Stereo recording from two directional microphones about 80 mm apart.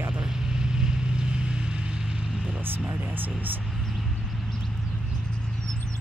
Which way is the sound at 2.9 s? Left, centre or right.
Right.